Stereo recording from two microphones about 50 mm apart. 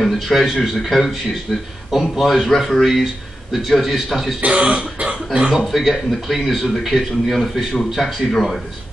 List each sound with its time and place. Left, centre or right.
0.0 s a man's voice: centre
4.4 s speech: right
5.6 s a man's voice: centre